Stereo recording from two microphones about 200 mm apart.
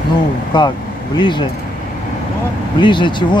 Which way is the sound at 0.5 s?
25° left (ahead or behind).